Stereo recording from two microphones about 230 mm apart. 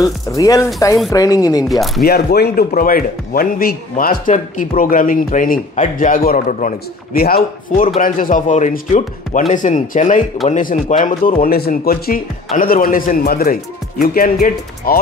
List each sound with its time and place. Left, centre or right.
0.0 s speech: centre
1.7 s speech: centre
2.0 s a man's voice: left